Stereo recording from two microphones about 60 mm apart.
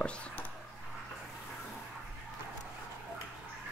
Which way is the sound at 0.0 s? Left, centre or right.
Centre.